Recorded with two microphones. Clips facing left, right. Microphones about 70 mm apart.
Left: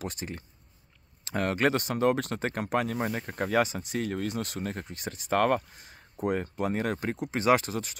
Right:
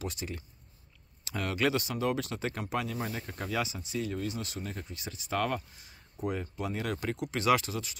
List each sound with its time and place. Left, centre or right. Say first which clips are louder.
0.0 s speech: left 2 dB; left